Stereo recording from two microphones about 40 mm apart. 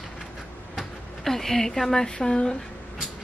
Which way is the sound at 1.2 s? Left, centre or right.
Centre.